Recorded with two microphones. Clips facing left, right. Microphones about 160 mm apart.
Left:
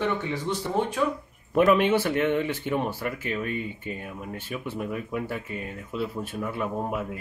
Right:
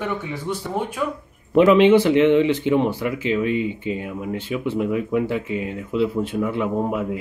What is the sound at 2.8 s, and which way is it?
Speech, 15° right (ahead or behind).